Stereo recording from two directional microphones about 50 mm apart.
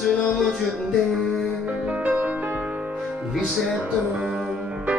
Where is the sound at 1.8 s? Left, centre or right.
Right.